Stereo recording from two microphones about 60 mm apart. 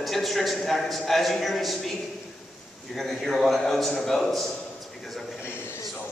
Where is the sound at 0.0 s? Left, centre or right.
Centre.